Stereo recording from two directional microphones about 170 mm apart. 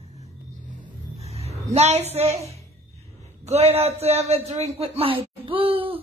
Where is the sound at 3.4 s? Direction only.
40° right (ahead or behind).